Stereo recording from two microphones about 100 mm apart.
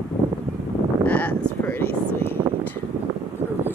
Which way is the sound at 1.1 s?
15° left (ahead or behind).